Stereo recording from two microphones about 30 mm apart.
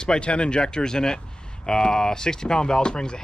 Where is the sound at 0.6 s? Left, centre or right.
Left.